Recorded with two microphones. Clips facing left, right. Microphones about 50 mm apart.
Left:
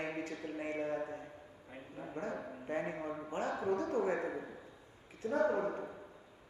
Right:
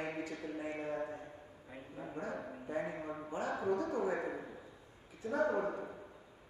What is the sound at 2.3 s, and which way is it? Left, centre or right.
A man's voice, centre.